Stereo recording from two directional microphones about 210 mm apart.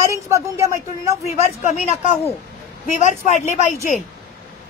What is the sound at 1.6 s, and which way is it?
A woman's voice, 35° left (ahead or behind).